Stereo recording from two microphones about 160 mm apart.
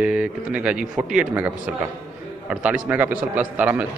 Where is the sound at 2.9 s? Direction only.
10° right (ahead or behind).